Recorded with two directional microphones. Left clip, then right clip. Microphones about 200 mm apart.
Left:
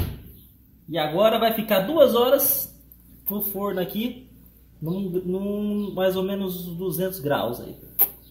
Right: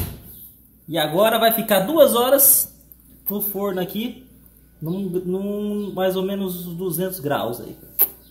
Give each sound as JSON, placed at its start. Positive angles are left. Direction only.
{"t": 0.9, "sound": "a man's voice", "side_deg": -25}